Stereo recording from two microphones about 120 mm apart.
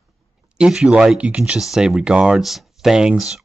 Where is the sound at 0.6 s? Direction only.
5° right (ahead or behind).